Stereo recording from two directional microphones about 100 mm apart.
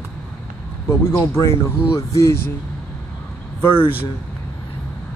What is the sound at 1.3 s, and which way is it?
Speech, 30° left (ahead or behind).